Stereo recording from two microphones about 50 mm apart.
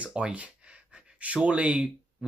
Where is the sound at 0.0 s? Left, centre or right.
Right.